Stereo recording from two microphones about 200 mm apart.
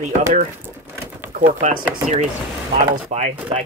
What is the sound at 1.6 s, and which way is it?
Speech, 40° right (ahead or behind).